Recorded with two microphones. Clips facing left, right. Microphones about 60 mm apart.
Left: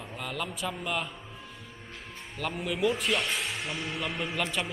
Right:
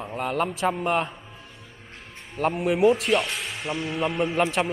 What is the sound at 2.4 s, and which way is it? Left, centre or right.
Speech, right.